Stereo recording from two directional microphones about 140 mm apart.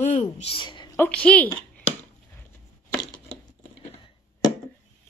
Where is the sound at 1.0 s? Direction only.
10° left (ahead or behind).